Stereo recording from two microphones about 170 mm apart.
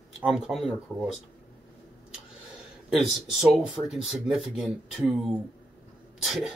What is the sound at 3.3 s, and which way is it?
Speech, 5° right (ahead or behind).